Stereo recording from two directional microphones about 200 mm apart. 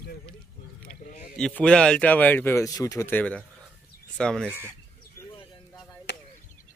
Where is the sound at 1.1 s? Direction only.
40° left (ahead or behind).